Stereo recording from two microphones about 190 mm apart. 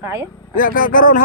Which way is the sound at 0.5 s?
45° left (ahead or behind).